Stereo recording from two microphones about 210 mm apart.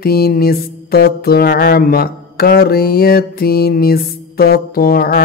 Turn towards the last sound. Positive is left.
turn(degrees=45)  # may be behind; listen again after turning